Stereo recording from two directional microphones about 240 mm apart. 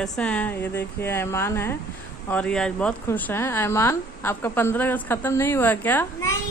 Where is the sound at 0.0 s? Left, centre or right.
Centre.